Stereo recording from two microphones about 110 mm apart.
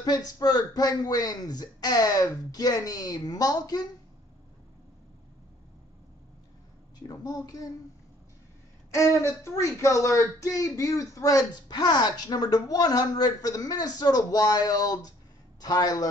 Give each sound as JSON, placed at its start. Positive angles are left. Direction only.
{"t": 0.0, "sound": "speech", "side_deg": 35}
{"t": 7.0, "sound": "speech", "side_deg": 35}
{"t": 8.9, "sound": "speech", "side_deg": 30}